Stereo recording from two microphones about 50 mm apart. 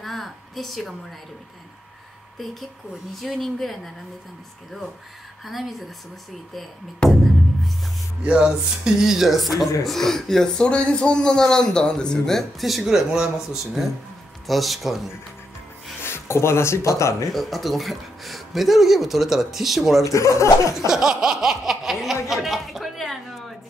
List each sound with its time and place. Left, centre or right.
0.0 s a sound: centre
3.2 s speech: centre
5.4 s speech: centre
7.1 s music: centre
8.2 s speech: right; by 12.4 s centre
12.4 s speech: centre
14.4 s speech: centre
16.0 s speech: left
17.3 s speech: centre
20.1 s speech: left
20.9 s laughter: centre
22.3 s chuckle: centre